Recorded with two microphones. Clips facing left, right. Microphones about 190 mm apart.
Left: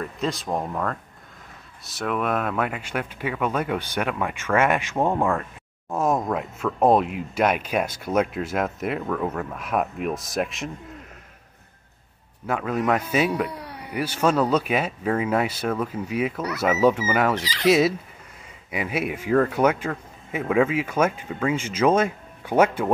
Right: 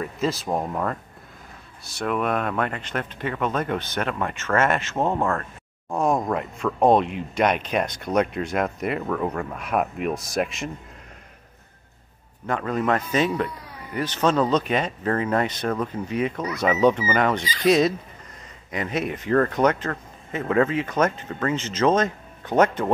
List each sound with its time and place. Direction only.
0.0 s speech: centre (ahead or behind)
12.4 s speech: 5° left (ahead or behind)
13.5 s a sound: 70° left (ahead or behind)
13.9 s speech: 10° left (ahead or behind)
17.4 s speech: 80° left
17.6 s speech: 5° left (ahead or behind)